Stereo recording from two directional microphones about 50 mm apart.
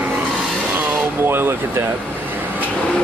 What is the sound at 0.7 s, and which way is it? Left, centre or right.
Vehicle, right.